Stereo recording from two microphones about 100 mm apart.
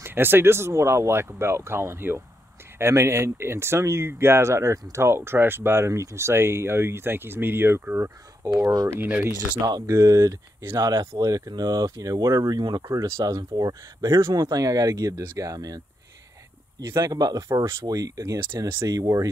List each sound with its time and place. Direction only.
0.0 s speech: 20° right (ahead or behind); by 15.8 s 35° right (ahead or behind)
16.8 s speech: 35° right (ahead or behind)